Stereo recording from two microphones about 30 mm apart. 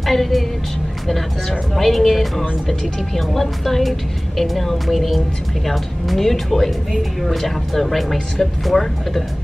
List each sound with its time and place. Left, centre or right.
0.0 s a woman's voice: centre
1.8 s a woman's voice: centre